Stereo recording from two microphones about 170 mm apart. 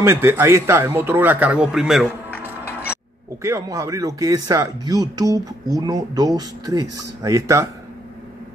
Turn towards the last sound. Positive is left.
turn(degrees=-20)  # may be behind; listen again after turning